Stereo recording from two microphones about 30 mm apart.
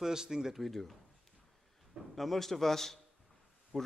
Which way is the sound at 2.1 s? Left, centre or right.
Centre.